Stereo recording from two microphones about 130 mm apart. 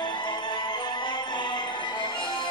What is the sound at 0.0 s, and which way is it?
Music, 35° left (ahead or behind).